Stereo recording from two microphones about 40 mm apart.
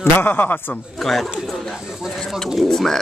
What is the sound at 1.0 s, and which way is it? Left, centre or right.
Speech, centre.